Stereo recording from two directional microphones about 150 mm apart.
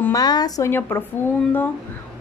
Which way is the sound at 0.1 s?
25° left (ahead or behind).